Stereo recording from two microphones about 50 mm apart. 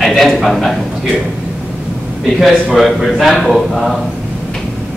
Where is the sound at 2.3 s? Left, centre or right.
Centre.